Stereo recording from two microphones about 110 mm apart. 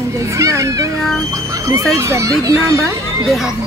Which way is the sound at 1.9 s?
25° right (ahead or behind).